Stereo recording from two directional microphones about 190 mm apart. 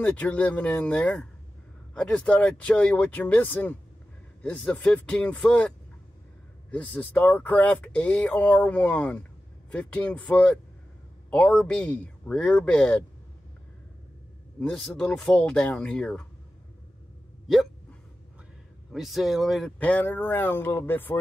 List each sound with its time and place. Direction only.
0.0 s speech: 5° left (ahead or behind)
6.7 s speech: 5° left (ahead or behind)
14.6 s speech: centre (ahead or behind)
18.9 s speech: centre (ahead or behind)